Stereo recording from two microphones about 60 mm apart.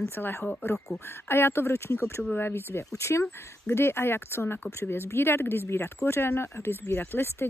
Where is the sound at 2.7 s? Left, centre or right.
Left.